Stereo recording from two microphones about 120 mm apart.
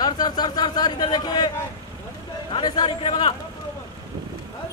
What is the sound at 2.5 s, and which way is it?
Speech, 35° left (ahead or behind).